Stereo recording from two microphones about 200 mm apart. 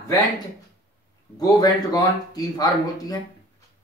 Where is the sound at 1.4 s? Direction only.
20° left (ahead or behind).